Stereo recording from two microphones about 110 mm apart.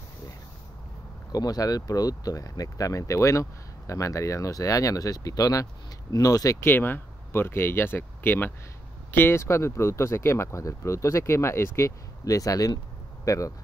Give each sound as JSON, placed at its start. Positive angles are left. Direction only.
{"t": 1.3, "sound": "speech", "side_deg": 35}
{"t": 6.6, "sound": "speech", "side_deg": 20}